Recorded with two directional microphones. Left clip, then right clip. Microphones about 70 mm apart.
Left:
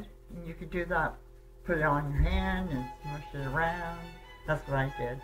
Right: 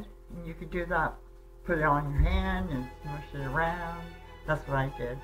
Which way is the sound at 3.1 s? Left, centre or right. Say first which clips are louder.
Right 2 dB; left.